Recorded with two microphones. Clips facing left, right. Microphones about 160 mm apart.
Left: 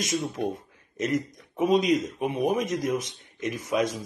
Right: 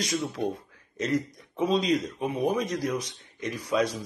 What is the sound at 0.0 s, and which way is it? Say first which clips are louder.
Speech: left 1 dB; 25° left (ahead or behind).